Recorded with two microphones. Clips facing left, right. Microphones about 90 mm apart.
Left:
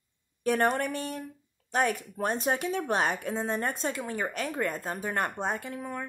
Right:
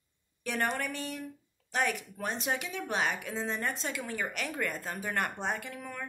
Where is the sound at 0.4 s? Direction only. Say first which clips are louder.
Left 7 dB; 40° left (ahead or behind).